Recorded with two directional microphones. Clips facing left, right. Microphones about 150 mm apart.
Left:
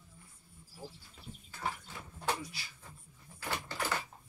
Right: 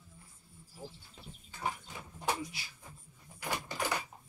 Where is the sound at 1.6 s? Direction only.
15° right (ahead or behind).